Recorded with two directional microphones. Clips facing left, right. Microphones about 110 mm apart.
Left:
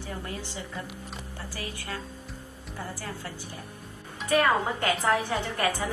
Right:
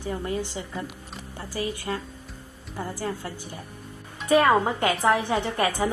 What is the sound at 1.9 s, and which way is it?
Speech, 35° right (ahead or behind).